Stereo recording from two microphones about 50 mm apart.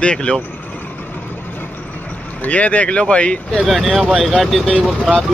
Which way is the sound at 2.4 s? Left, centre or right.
Left.